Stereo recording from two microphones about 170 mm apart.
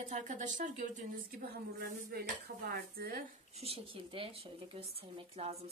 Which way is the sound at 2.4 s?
65° right (ahead or behind).